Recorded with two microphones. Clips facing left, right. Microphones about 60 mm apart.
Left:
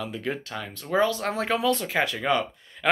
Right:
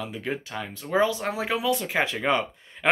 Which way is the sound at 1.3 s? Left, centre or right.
Centre.